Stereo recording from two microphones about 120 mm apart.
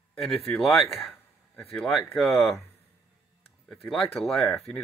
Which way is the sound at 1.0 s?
10° left (ahead or behind).